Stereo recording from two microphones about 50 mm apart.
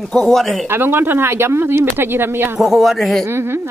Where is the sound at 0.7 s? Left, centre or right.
Right.